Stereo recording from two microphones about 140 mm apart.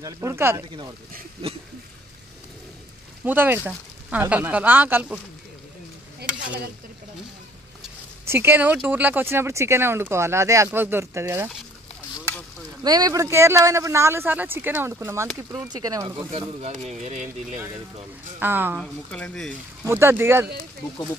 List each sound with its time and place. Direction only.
0.0 s speech: 20° right (ahead or behind)
3.3 s speech: 15° right (ahead or behind)
8.3 s speech: 15° right (ahead or behind)
12.8 s speech: 30° right (ahead or behind)
16.3 s speech: 50° right (ahead or behind)
18.4 s speech: 15° right (ahead or behind)
18.8 s speech: 5° left (ahead or behind)
19.9 s speech: 15° right (ahead or behind)